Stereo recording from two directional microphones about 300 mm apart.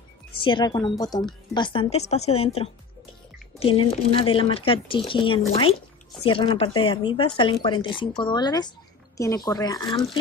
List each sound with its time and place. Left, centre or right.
0.4 s a woman's voice: centre